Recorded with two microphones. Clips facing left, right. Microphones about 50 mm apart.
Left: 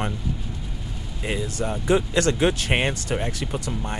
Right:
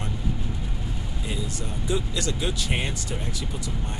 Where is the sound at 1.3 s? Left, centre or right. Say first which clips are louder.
Left 7 dB; left.